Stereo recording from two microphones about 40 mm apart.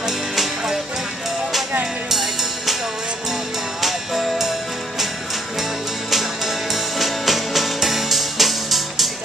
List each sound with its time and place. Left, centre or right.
0.0 s music: centre
2.0 s music: centre
3.8 s music: centre